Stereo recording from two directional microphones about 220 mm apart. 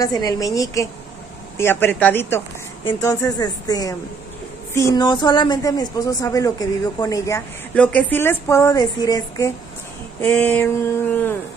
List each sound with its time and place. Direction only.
0.0 s speech: 15° left (ahead or behind)